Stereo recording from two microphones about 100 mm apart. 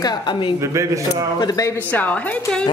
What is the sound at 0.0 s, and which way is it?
Speech, 45° left (ahead or behind).